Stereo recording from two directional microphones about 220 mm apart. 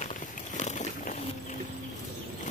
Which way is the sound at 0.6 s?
35° left (ahead or behind).